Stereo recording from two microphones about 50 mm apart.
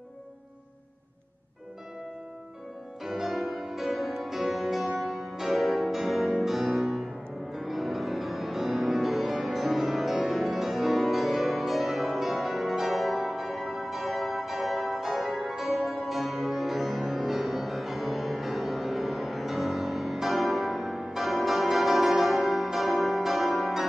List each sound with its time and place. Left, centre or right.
3.0 s music: centre